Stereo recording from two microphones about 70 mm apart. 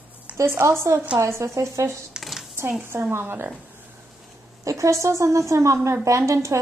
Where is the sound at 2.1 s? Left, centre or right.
Centre.